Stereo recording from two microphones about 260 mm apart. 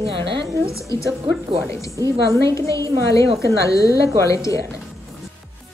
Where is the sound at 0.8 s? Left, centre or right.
Centre.